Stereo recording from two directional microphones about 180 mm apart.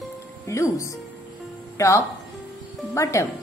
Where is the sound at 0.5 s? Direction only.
15° left (ahead or behind).